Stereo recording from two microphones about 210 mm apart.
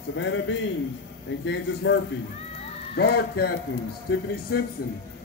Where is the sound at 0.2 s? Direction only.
60° left (ahead or behind).